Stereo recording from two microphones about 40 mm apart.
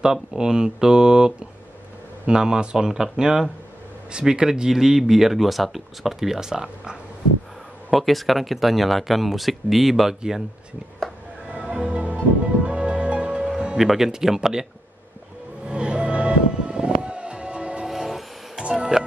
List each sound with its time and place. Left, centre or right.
0.0 s speech: centre
7.9 s speech: centre
11.4 s music: right
13.7 s speech: centre
15.6 s music: right
17.8 s music: centre
18.6 s music: centre